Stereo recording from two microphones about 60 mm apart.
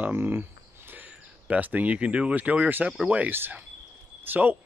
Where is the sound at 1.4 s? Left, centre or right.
Right.